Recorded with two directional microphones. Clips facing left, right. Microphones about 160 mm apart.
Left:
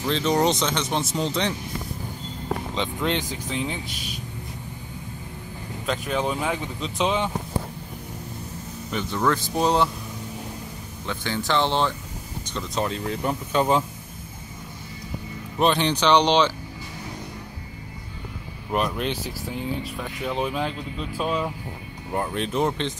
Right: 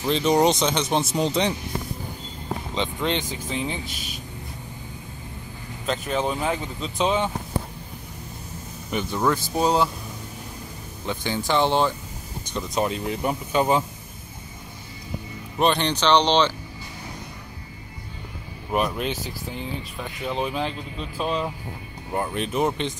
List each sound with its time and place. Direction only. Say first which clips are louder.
0.0 s speech: right 2 dB; 15° right (ahead or behind)
2.7 s speech: right 2 dB; centre (ahead or behind)
5.9 s speech: right 1 dB; centre (ahead or behind)
8.9 s speech: right 1 dB; 10° right (ahead or behind)
11.1 s speech: right 1 dB; 15° right (ahead or behind)
15.5 s speech: even; centre (ahead or behind)
18.7 s speech: right 1 dB; 5° right (ahead or behind)